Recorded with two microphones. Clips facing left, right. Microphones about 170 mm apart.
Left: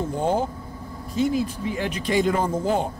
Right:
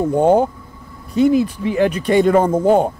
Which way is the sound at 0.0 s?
60° right (ahead or behind).